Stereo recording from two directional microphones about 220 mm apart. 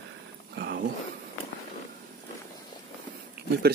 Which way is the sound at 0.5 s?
45° right (ahead or behind).